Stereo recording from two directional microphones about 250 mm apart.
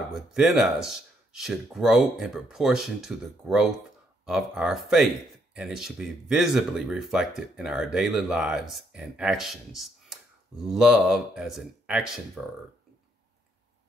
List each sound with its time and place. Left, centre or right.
0.1 s speech: centre